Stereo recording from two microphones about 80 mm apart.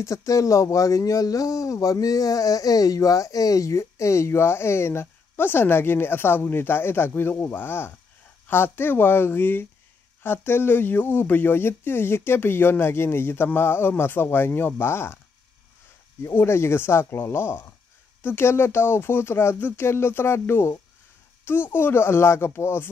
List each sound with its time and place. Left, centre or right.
0.0 s speech: left
16.2 s speech: left